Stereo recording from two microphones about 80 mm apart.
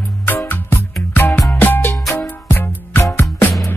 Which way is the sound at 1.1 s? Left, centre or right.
Left.